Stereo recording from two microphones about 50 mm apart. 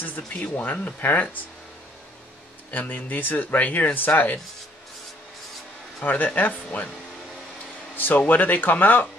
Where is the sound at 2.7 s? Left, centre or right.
Left.